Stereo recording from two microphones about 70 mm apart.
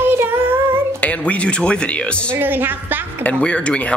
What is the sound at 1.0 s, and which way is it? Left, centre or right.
Speech, centre.